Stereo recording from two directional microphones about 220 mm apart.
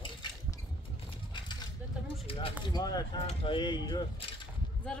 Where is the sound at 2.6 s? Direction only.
20° left (ahead or behind).